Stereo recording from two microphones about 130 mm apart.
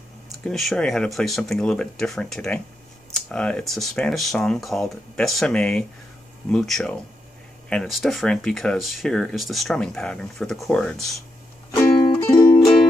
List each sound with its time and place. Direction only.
0.5 s speech: 5° left (ahead or behind)
11.7 s music: 35° left (ahead or behind)